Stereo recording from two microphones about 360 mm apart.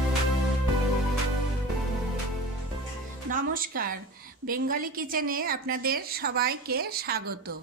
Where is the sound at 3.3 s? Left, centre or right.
Right.